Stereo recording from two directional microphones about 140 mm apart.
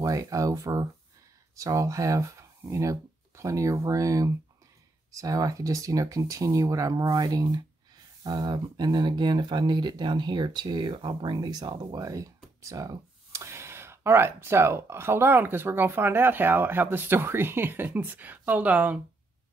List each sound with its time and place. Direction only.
0.0 s speech: 25° right (ahead or behind)